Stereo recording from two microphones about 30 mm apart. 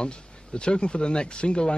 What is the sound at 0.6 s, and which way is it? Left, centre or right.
Speech, left.